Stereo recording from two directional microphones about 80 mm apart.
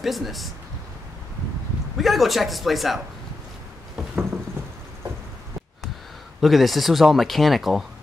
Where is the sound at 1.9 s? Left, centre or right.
Centre.